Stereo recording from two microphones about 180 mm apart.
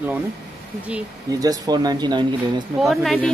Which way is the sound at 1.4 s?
20° right (ahead or behind).